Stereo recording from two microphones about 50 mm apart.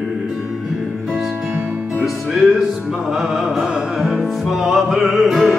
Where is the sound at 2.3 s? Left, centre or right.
Centre.